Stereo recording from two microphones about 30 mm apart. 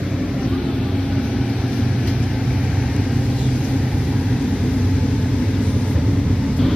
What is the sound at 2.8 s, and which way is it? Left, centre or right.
Vehicle, centre.